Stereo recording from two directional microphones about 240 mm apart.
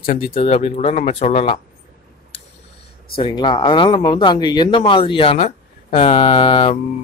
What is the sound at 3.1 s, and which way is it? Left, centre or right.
Speech, centre.